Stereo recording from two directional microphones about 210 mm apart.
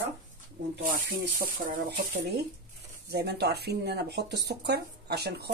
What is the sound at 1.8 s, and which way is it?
Speech, 50° right (ahead or behind).